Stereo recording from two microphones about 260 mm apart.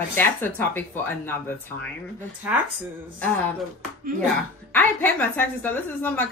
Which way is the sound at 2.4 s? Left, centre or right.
Centre.